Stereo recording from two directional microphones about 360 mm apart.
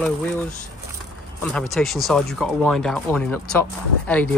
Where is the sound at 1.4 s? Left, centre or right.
Centre.